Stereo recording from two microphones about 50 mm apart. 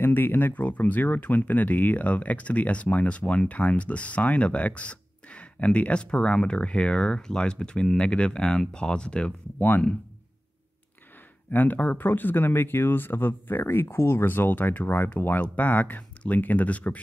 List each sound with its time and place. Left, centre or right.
0.0 s speech: left; by 9.3 s centre
9.6 s speech: left
11.5 s speech: left
14.3 s speech: left